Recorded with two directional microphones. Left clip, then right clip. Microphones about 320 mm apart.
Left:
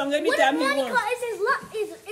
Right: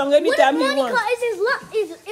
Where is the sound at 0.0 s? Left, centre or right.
Centre.